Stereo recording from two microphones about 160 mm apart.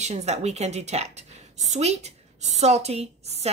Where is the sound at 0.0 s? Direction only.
45° right (ahead or behind).